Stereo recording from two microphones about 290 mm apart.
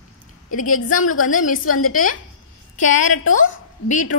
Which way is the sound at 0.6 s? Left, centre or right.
Left.